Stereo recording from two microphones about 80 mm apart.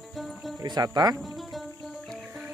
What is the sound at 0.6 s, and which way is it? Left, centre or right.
Speech, right.